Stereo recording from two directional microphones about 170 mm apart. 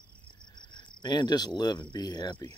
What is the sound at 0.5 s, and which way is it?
Cricket, 30° left (ahead or behind).